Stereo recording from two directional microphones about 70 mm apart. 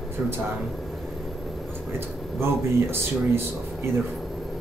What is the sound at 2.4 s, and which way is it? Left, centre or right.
Speech, right.